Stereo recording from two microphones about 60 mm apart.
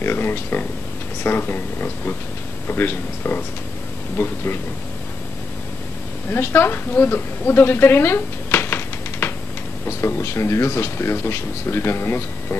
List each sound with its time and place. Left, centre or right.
0.0 s speech: left
6.3 s a woman's voice: left
9.8 s speech: left